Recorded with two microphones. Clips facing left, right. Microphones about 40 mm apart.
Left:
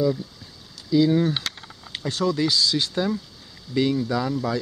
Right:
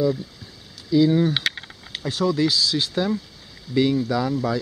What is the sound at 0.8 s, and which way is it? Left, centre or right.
Speech, centre.